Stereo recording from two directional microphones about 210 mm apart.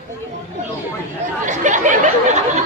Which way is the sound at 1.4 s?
35° right (ahead or behind).